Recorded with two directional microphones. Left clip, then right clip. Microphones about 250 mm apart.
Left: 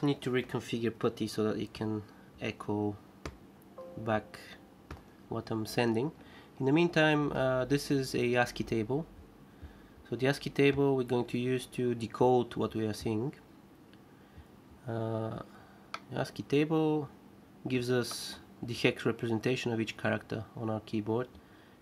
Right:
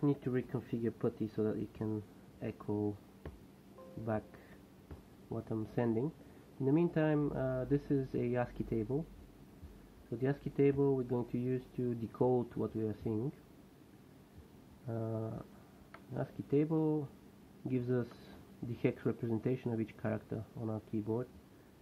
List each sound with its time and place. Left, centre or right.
0.0 s speech: centre
5.3 s speech: centre
10.1 s speech: centre
14.9 s speech: centre